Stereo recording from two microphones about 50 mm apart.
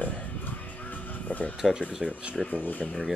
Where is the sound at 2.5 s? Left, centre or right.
Left.